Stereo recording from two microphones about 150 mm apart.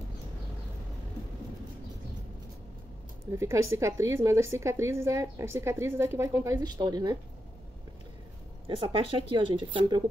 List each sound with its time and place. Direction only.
3.3 s a woman's voice: 20° right (ahead or behind)
8.6 s speech: 40° right (ahead or behind)